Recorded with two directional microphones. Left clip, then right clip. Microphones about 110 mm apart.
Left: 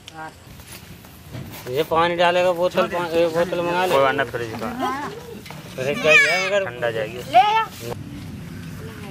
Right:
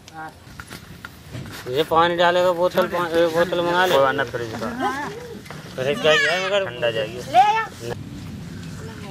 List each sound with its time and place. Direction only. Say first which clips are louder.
1.7 s speech: right 1 dB; 20° right (ahead or behind)
4.0 s speech: even; 15° left (ahead or behind)
7.2 s speech: left 1 dB; 25° left (ahead or behind)